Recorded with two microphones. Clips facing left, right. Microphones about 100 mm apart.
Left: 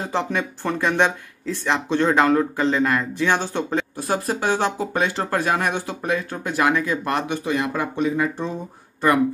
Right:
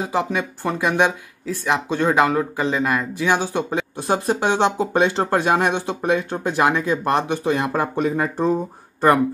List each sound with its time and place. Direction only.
0.0 s speech: 10° right (ahead or behind)
4.1 s speech: 25° right (ahead or behind); by 8.5 s 40° right (ahead or behind)